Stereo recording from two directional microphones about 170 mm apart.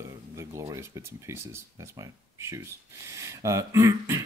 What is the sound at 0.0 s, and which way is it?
Speech, 15° right (ahead or behind).